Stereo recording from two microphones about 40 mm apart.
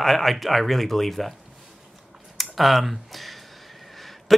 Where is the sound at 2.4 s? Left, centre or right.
Centre.